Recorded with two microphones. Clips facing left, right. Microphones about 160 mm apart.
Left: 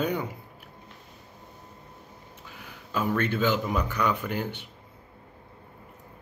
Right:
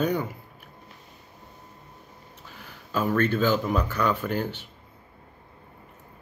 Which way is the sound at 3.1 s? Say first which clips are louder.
Right 3 dB; 40° right (ahead or behind).